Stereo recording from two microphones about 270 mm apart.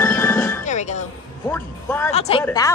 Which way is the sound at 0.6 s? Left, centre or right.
Left.